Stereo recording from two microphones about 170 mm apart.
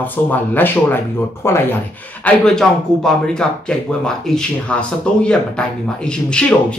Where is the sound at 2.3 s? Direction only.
5° left (ahead or behind).